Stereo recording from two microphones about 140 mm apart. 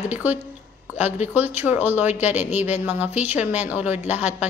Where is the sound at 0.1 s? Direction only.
10° right (ahead or behind).